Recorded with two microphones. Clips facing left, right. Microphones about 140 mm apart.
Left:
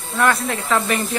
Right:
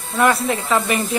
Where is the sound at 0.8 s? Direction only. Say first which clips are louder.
Left 1 dB; 20° right (ahead or behind).